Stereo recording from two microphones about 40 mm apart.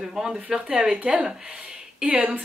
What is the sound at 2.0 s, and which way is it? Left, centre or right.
Speech, right.